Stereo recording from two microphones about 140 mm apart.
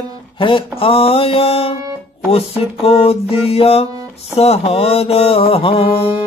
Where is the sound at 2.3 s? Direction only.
45° left (ahead or behind).